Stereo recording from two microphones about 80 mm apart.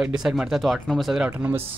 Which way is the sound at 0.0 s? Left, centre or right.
Centre.